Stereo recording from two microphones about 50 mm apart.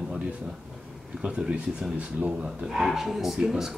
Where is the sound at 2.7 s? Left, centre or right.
Centre.